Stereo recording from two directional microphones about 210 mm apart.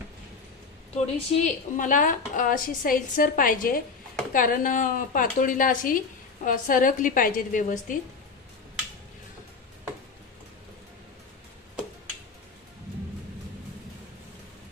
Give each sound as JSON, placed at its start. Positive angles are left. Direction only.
{"t": 0.9, "sound": "a woman's voice", "side_deg": 35}